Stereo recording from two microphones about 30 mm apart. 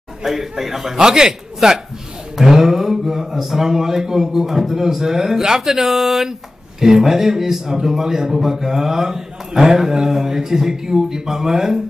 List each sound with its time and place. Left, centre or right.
0.2 s a man's voice: centre
0.9 s a man's voice: right